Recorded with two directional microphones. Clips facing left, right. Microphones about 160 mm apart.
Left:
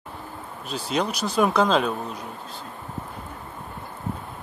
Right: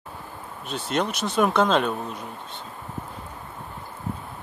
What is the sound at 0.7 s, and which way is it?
Speech, centre (ahead or behind).